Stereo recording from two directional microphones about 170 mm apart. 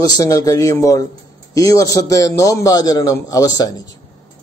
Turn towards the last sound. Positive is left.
turn(degrees=25)  # may be behind; listen again after turning